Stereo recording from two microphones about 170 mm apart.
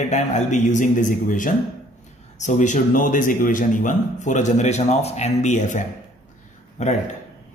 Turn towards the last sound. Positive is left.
turn(degrees=45)  # may be behind; listen again after turning